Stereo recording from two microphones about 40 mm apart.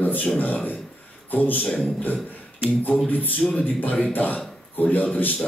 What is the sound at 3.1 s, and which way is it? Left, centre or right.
Speech, left.